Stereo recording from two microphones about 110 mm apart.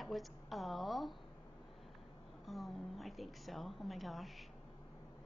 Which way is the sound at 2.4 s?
Centre (ahead or behind).